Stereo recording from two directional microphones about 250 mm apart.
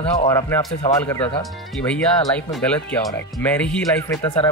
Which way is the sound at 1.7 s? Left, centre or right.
Centre.